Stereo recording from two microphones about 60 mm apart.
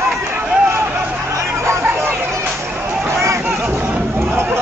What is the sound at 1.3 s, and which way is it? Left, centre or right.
Chatter, right.